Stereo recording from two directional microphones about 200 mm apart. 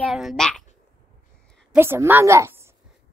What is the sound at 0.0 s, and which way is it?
Speech, centre (ahead or behind).